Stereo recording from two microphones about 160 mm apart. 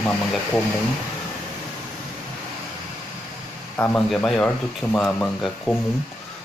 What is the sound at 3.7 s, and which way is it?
Speech, 15° left (ahead or behind).